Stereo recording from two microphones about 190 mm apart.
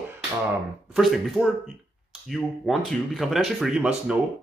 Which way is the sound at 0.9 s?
Centre (ahead or behind).